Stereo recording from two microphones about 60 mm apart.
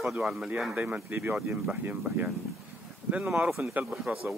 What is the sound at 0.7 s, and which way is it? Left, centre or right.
Speech, right.